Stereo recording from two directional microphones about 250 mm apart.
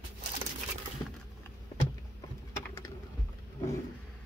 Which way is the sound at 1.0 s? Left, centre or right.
Centre.